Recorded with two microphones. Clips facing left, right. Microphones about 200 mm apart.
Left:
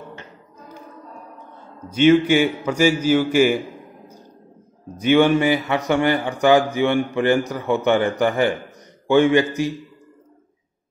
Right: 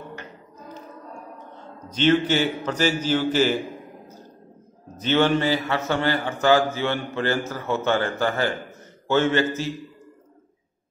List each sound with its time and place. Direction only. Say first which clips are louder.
1.9 s a man's voice: left 5 dB; 10° left (ahead or behind)
4.9 s a man's voice: left 5 dB; 10° left (ahead or behind)